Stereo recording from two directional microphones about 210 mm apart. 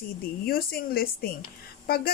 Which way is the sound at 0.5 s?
45° left (ahead or behind).